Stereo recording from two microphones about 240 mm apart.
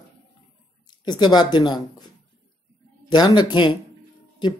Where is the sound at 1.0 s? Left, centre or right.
Centre.